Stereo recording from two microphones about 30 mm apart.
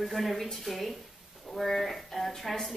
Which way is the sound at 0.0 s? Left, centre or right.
Centre.